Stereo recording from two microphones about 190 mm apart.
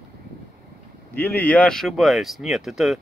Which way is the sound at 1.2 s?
10° left (ahead or behind).